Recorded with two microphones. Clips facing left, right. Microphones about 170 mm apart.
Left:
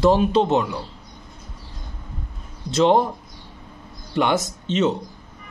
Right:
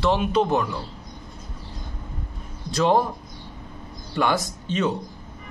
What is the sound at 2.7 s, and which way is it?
Speech, 25° left (ahead or behind).